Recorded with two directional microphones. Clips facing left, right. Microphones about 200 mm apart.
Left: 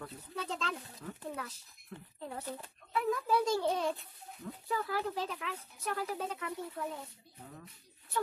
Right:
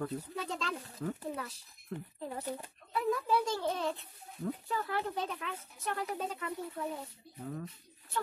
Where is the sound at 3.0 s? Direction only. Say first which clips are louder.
Right 1 dB; 10° left (ahead or behind).